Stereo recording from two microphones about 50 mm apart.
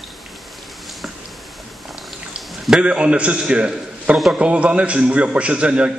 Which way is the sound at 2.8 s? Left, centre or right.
Right.